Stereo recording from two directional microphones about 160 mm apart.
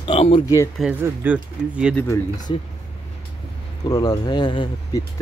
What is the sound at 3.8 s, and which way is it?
Speech, 25° left (ahead or behind).